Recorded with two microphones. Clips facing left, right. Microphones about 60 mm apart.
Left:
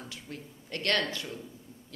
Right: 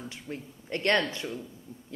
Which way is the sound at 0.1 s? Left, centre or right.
Right.